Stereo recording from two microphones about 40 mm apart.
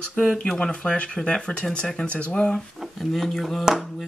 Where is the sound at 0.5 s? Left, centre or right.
Left.